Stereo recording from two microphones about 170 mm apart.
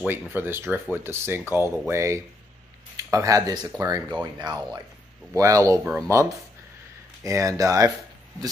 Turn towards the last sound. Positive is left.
turn(degrees=-20)  # may be behind; listen again after turning